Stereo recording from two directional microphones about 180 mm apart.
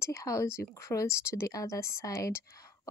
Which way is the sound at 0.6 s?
15° left (ahead or behind).